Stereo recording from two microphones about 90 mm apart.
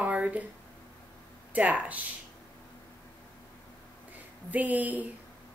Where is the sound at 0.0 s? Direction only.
15° right (ahead or behind).